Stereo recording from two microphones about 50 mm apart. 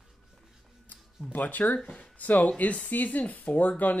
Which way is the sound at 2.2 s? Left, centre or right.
Left.